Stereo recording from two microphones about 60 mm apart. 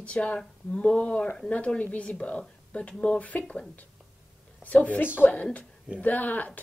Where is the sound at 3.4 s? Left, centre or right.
Centre.